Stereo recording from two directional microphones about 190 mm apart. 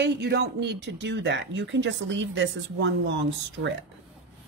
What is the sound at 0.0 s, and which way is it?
Speech, 65° right (ahead or behind).